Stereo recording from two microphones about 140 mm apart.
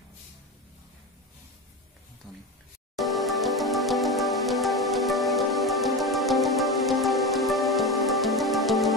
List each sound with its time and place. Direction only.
3.0 s music: centre (ahead or behind)